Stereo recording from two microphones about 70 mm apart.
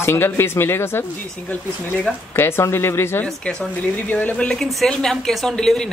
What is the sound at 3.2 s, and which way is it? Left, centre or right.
Speech, centre.